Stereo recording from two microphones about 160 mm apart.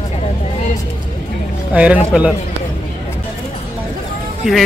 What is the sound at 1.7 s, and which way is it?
Speech, 10° right (ahead or behind).